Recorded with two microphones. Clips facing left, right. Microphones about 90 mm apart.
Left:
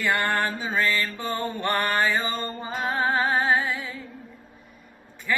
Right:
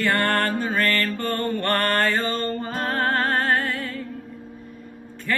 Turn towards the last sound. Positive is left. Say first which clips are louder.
# right 1 dB
turn(degrees=10)  # may be behind; listen again after turning